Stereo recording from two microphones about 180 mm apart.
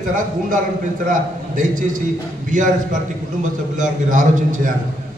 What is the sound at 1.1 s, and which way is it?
A man's voice, 45° right (ahead or behind).